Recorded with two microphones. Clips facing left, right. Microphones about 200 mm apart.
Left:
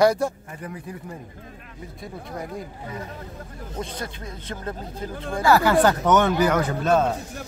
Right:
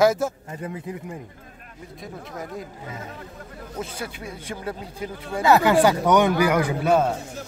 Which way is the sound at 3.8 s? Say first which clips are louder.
Even; 10° right (ahead or behind).